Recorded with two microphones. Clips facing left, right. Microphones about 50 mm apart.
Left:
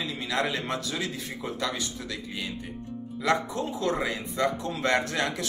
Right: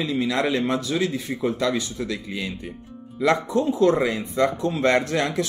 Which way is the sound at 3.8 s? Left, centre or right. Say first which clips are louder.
Right 8 dB; right.